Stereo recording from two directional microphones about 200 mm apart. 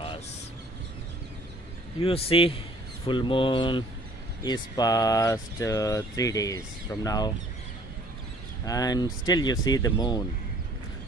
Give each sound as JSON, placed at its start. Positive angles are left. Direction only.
{"t": 2.0, "sound": "speech", "side_deg": 30}
{"t": 8.6, "sound": "speech", "side_deg": 20}